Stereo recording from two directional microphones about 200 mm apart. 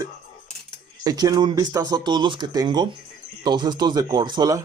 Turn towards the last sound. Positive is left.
turn(degrees=-20)  # may be behind; listen again after turning